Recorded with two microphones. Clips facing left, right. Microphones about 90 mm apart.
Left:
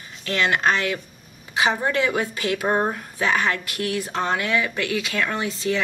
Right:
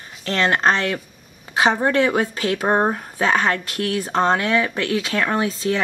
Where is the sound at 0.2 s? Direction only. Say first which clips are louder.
Right 3 dB; 40° right (ahead or behind).